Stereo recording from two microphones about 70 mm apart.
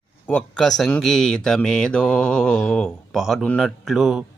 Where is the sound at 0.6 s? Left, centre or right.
Centre.